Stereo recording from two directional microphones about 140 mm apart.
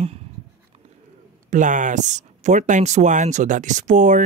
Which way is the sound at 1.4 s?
65° right (ahead or behind).